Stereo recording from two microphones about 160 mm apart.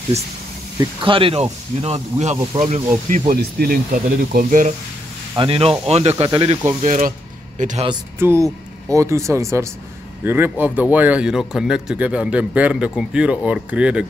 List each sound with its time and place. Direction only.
0.7 s speech: 35° right (ahead or behind); by 3.3 s 50° right (ahead or behind)
3.3 s speech: 70° right (ahead or behind); by 4.7 s 55° right (ahead or behind)
5.3 s speech: 35° right (ahead or behind); by 7.8 s 50° right (ahead or behind)
8.2 s speech: 15° right (ahead or behind)